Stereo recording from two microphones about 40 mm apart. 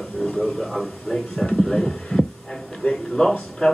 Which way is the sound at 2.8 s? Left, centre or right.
Left.